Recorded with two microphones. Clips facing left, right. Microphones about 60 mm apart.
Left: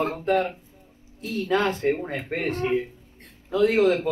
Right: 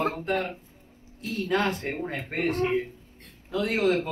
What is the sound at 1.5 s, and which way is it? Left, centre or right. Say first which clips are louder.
Speech: left 5 dB; left.